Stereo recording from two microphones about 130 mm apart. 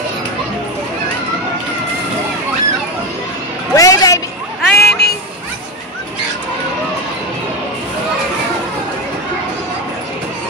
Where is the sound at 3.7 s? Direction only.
25° left (ahead or behind).